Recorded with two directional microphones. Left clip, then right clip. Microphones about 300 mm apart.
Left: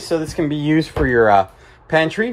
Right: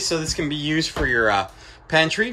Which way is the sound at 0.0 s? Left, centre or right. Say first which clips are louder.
Left 4 dB; centre.